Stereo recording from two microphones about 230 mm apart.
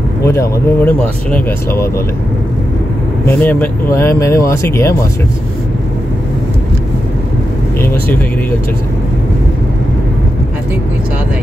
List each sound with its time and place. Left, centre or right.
0.2 s speech: centre
3.3 s speech: centre
7.8 s speech: centre